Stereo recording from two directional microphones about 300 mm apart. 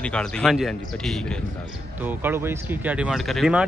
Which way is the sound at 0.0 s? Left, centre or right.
Centre.